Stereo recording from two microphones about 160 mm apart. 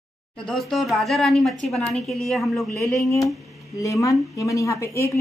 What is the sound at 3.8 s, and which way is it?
Speech, 20° left (ahead or behind).